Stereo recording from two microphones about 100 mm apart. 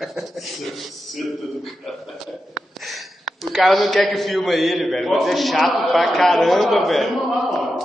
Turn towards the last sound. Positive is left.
turn(degrees=0)  # may be behind; listen again after turning